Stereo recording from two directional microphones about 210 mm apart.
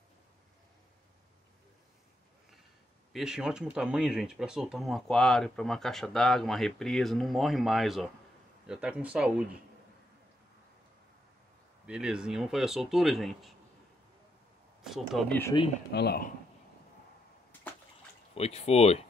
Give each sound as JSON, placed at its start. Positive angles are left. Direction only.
{"t": 3.1, "sound": "speech", "side_deg": 0}
{"t": 11.8, "sound": "speech", "side_deg": -5}
{"t": 14.8, "sound": "speech", "side_deg": 0}
{"t": 15.9, "sound": "speech", "side_deg": 50}
{"t": 18.3, "sound": "speech", "side_deg": 30}